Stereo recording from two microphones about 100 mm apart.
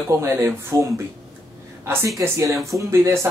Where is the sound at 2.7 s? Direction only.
35° right (ahead or behind).